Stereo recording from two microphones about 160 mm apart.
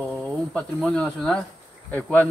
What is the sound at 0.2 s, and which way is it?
A man's voice, 5° left (ahead or behind).